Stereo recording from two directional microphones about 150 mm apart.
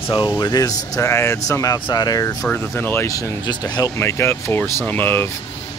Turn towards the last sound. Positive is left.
turn(degrees=15)  # may be behind; listen again after turning